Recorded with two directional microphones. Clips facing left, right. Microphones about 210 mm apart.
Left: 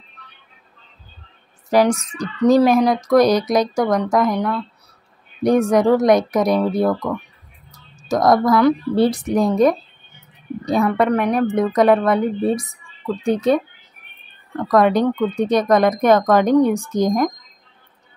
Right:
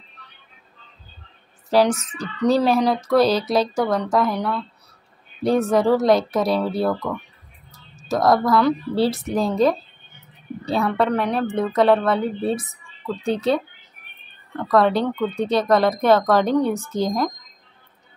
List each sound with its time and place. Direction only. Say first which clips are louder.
1.7 s speech: left 2 dB; 10° left (ahead or behind)
8.2 s speech: left 3 dB; 15° left (ahead or behind)